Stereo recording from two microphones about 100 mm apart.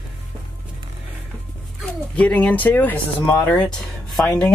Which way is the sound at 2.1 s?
15° left (ahead or behind).